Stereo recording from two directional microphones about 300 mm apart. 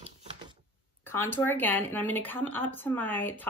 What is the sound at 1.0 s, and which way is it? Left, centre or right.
Speech, centre.